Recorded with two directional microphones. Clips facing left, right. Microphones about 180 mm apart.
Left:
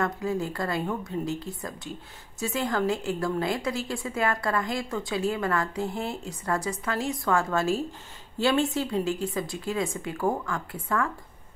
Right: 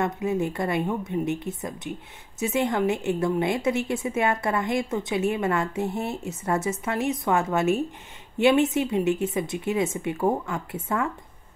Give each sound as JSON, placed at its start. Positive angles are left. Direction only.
{"t": 0.0, "sound": "a woman's voice", "side_deg": -20}